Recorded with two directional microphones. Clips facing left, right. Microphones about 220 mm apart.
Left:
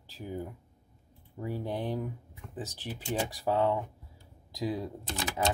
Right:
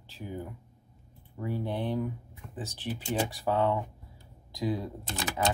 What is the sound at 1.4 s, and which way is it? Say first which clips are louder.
Speech: right 2 dB; 40° left (ahead or behind).